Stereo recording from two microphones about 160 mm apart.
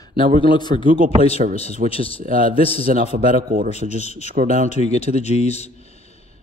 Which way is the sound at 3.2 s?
60° right (ahead or behind).